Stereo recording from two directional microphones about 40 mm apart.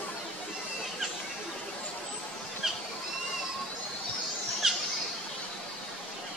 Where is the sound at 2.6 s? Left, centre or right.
Centre.